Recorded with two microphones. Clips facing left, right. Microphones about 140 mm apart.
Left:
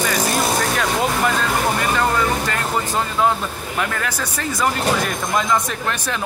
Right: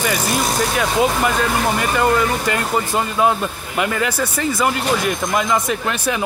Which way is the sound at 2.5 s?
10° right (ahead or behind).